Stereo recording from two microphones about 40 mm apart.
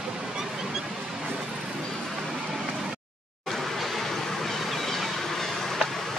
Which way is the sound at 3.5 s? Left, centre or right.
Centre.